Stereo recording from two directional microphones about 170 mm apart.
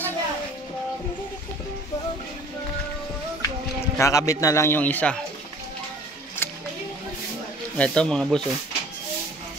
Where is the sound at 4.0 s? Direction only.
20° left (ahead or behind).